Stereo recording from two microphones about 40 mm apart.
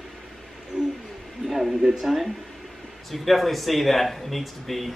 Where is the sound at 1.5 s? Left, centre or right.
Centre.